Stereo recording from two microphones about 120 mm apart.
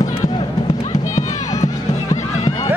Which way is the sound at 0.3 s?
40° left (ahead or behind).